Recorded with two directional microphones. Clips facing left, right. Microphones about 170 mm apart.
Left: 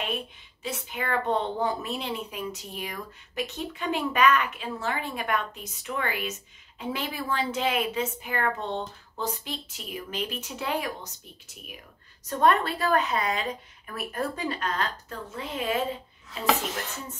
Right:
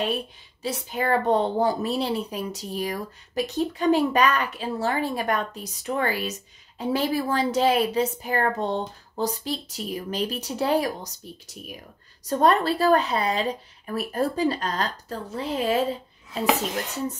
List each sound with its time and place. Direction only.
0.0 s a woman's voice: 35° right (ahead or behind)